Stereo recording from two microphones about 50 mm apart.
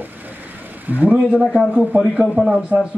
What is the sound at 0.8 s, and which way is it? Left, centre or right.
A man's voice, right.